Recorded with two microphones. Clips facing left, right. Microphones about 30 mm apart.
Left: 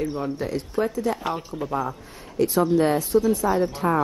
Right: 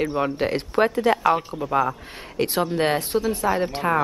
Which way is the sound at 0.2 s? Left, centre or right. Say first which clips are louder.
Right 4 dB; right.